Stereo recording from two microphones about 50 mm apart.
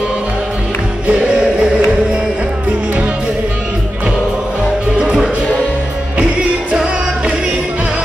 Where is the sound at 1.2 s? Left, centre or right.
Centre.